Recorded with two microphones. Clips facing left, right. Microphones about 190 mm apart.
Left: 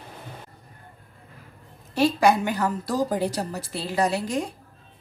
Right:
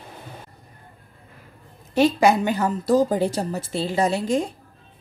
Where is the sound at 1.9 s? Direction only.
20° right (ahead or behind).